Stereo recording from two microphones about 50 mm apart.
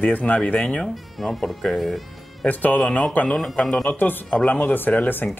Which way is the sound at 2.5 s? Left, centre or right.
Left.